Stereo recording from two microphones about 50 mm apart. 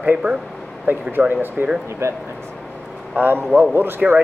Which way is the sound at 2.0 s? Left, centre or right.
Right.